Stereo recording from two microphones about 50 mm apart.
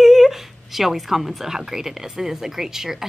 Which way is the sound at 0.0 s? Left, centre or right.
Centre.